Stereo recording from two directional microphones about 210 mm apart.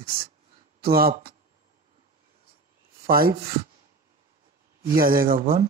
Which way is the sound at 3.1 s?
45° right (ahead or behind).